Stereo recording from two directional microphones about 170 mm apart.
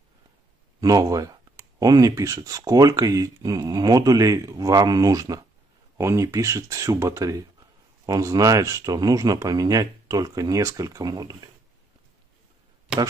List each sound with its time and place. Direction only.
0.7 s speech: 20° right (ahead or behind)